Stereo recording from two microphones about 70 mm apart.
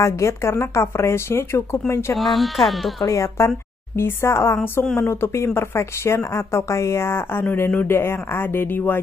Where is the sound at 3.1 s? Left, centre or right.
Left.